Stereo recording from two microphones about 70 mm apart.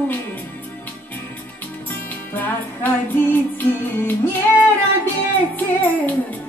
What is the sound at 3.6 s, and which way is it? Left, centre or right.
Music, left.